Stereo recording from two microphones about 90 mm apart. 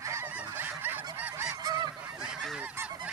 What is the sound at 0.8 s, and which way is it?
Goose, 20° right (ahead or behind).